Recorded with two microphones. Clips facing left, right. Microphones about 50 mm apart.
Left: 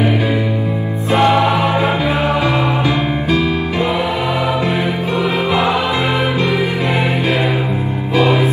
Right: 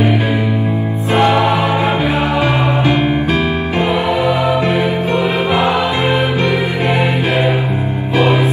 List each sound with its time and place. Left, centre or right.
1.1 s music: right